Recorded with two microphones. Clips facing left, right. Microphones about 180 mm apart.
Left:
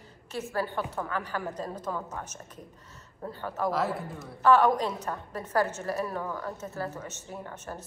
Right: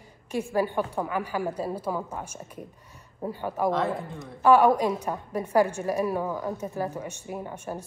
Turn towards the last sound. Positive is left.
turn(degrees=-15)  # may be behind; listen again after turning